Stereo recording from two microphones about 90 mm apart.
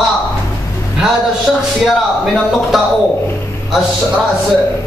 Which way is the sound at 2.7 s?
Centre (ahead or behind).